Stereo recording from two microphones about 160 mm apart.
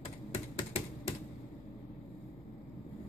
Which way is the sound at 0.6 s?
30° left (ahead or behind).